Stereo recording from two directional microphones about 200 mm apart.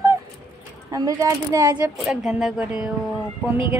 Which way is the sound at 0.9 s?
15° right (ahead or behind).